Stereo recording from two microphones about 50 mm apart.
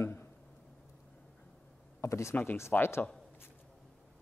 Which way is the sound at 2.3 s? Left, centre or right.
Left.